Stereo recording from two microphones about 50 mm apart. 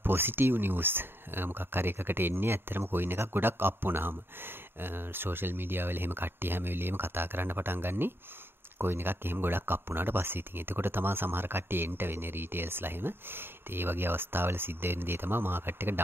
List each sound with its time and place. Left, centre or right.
0.0 s speech: right